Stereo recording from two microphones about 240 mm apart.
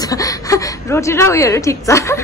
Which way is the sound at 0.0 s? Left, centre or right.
Centre.